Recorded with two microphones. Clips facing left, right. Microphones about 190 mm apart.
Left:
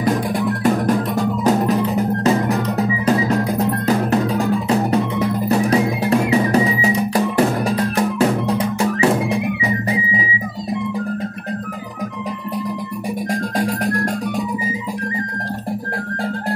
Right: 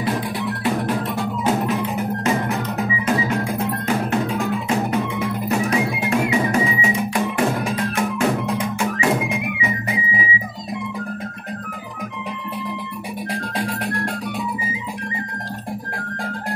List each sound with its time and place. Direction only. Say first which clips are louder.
0.0 s music: left 5 dB; 45° left (ahead or behind)
13.3 s music: left 5 dB; 45° left (ahead or behind)